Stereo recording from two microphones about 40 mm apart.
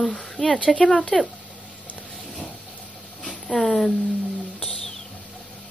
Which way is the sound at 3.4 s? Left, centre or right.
Centre.